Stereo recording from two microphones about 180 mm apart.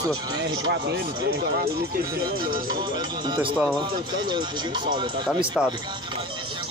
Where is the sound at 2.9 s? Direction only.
25° right (ahead or behind).